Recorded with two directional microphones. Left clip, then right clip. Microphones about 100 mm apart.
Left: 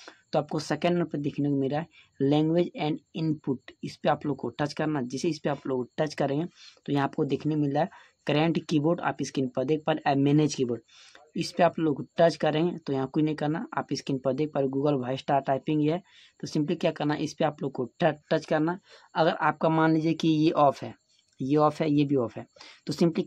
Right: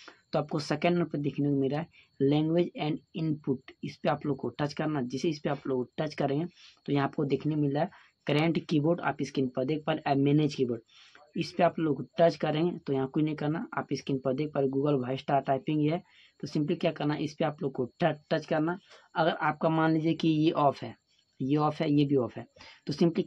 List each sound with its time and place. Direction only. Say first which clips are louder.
0.0 s speech: left 3 dB; 25° left (ahead or behind)